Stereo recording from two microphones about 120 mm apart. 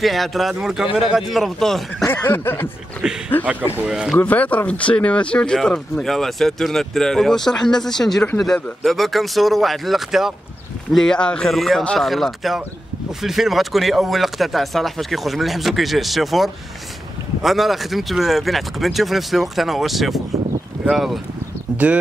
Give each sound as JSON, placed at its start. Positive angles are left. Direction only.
{"t": 0.0, "sound": "speech", "side_deg": 0}
{"t": 2.1, "sound": "snicker", "side_deg": 20}
{"t": 3.0, "sound": "speech", "side_deg": -5}
{"t": 4.2, "sound": "speech", "side_deg": 15}